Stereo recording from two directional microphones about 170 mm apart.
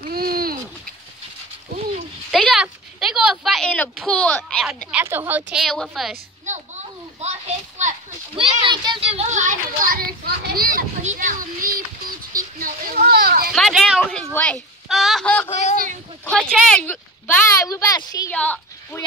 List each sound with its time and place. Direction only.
0.1 s a sound: 60° right (ahead or behind)
2.3 s a sound: centre (ahead or behind)
5.0 s a woman's voice: 10° right (ahead or behind)
7.2 s a sound: 40° right (ahead or behind)
8.4 s a child's voice: 30° right (ahead or behind); by 10.8 s 60° right (ahead or behind)
11.1 s a child's voice: 50° right (ahead or behind)
12.4 s a sound: 55° right (ahead or behind)
13.0 s children playing: 60° right (ahead or behind)
13.5 s speech: centre (ahead or behind)
15.5 s speech: 45° left (ahead or behind)
16.3 s a woman's voice: 5° left (ahead or behind)
18.3 s a woman's voice: 10° left (ahead or behind)